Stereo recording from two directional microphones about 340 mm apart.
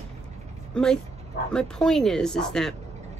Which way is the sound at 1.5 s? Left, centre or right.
Centre.